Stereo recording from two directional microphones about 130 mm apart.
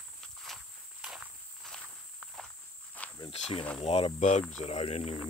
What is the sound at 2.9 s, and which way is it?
Cricket, 10° left (ahead or behind).